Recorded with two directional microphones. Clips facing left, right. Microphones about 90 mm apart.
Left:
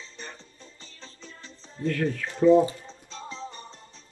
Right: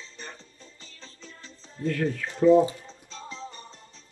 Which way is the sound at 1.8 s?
10° right (ahead or behind).